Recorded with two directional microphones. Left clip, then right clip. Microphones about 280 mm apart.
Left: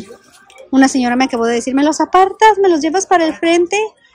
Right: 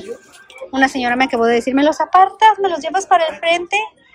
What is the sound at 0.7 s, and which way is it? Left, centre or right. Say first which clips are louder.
A woman's voice: left 3 dB; centre.